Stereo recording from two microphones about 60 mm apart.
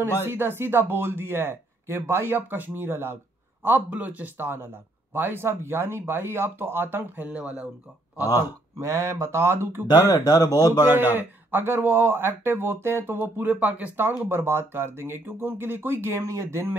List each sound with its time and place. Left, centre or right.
0.0 s speech: right
7.2 s speech: right
8.7 s speech: right
10.0 s speech: left
11.0 s speech: right
16.2 s speech: right